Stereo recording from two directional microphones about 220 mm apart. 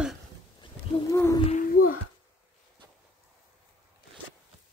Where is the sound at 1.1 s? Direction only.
15° left (ahead or behind).